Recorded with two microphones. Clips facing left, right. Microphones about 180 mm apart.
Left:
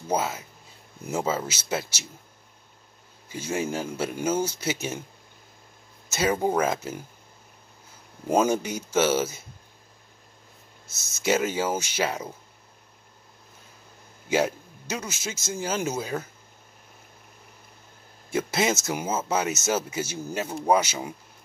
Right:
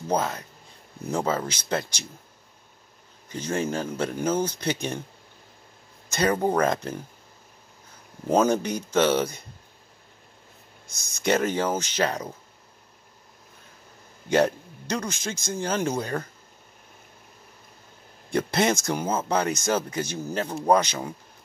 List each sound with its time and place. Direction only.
0.1 s speech: 5° left (ahead or behind)
3.3 s speech: 10° left (ahead or behind)
6.0 s speech: 5° left (ahead or behind)
8.3 s speech: 10° left (ahead or behind)
10.9 s speech: 5° left (ahead or behind)
14.3 s speech: 5° left (ahead or behind)
18.3 s speech: 5° left (ahead or behind)